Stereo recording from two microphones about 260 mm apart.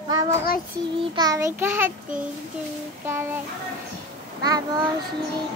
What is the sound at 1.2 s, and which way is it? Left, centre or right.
Child singing, centre.